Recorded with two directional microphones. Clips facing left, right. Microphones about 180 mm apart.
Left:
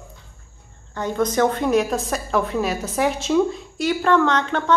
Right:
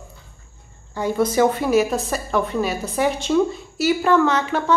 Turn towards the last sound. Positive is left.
turn(degrees=-10)  # may be behind; listen again after turning